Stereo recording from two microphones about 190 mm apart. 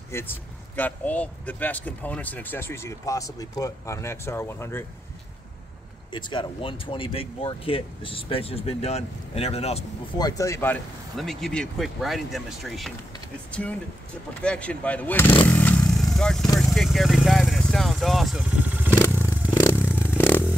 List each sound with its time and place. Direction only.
0.1 s speech: 10° left (ahead or behind)
6.1 s speech: 25° left (ahead or behind)
10.1 s speech: 20° left (ahead or behind)
11.1 s speech: centre (ahead or behind)
15.4 s motorcycle: 10° left (ahead or behind)
16.5 s vehicle: centre (ahead or behind)
18.9 s motorcycle: 10° left (ahead or behind)
19.5 s clatter: 15° left (ahead or behind)